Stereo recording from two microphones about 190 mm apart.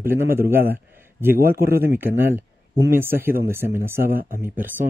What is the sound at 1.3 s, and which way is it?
Speech, 50° right (ahead or behind).